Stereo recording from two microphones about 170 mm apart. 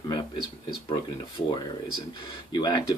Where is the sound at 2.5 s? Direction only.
25° left (ahead or behind).